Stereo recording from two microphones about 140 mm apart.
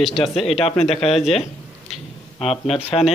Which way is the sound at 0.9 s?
45° left (ahead or behind).